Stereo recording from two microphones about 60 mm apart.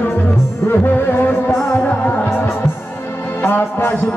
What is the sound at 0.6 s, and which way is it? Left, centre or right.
Music, left.